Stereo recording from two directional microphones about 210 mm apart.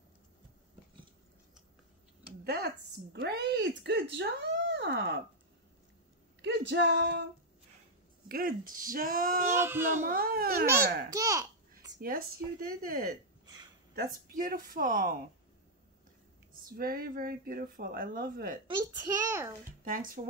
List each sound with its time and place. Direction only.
2.4 s a woman's voice: 50° right (ahead or behind)
6.4 s speech: 55° right (ahead or behind)
8.3 s a woman's voice: 45° right (ahead or behind)
9.5 s a child's voice: 10° right (ahead or behind)
10.0 s a woman's voice: 45° right (ahead or behind)
11.1 s a child's voice: 15° right (ahead or behind)
12.0 s a woman's voice: 45° right (ahead or behind)
16.5 s a woman's voice: 45° right (ahead or behind)
18.7 s a child's voice: 20° right (ahead or behind)
19.8 s speech: 40° right (ahead or behind)